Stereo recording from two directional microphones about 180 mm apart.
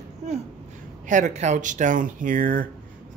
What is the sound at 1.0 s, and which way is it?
Speech, 40° right (ahead or behind).